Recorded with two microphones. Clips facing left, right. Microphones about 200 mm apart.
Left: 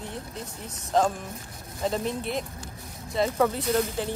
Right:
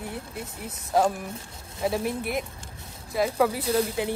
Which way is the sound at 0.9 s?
10° right (ahead or behind).